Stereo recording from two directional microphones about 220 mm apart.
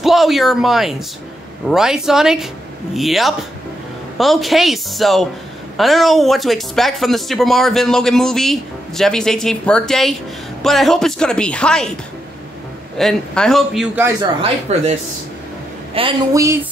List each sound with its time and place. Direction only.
0.0 s speech: centre (ahead or behind)
12.9 s speech: 5° left (ahead or behind)
14.0 s speech: 20° right (ahead or behind)
14.7 s speech: 30° right (ahead or behind)
15.9 s speech: 25° right (ahead or behind)